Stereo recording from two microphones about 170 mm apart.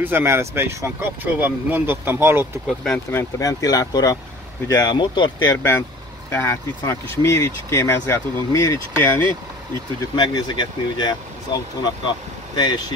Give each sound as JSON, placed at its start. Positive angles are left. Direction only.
{"t": 0.0, "sound": "speech", "side_deg": -15}
{"t": 3.1, "sound": "speech", "side_deg": 15}
{"t": 5.6, "sound": "speech", "side_deg": 10}
{"t": 10.1, "sound": "speech", "side_deg": 25}